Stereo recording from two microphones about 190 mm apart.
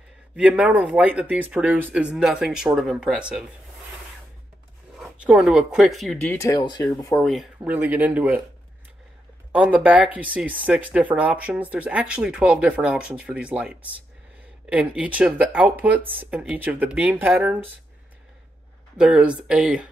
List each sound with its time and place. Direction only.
0.4 s speech: 5° right (ahead or behind)
4.9 s speech: 5° right (ahead or behind)
6.4 s speech: 20° left (ahead or behind)
7.2 s speech: 5° right (ahead or behind)
9.5 s speech: 5° right (ahead or behind)
18.9 s speech: 5° right (ahead or behind)